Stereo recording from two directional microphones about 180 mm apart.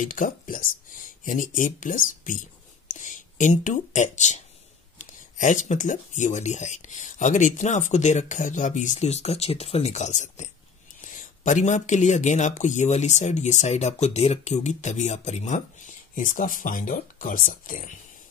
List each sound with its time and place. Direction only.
0.0 s speech: 50° left (ahead or behind)